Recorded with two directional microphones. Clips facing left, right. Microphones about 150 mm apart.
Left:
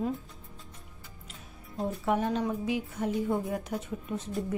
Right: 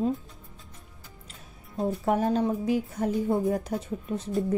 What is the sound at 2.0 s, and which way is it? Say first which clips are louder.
Speech: right 3 dB; 40° right (ahead or behind).